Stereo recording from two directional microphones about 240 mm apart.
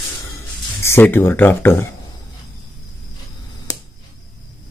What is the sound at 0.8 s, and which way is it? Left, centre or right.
Speech, centre.